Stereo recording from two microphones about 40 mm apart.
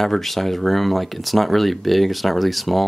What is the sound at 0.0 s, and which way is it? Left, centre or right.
Speech, centre.